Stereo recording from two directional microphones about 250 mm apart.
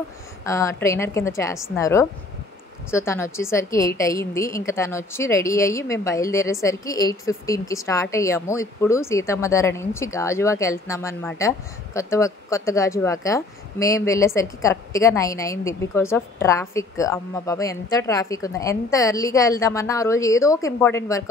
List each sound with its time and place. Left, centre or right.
0.5 s a woman's voice: centre